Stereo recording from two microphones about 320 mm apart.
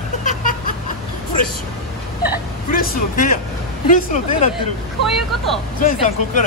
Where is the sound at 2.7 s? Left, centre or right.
Left.